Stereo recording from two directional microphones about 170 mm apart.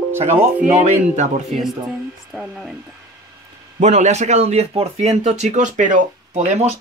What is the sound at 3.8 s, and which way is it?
Speech, 45° right (ahead or behind).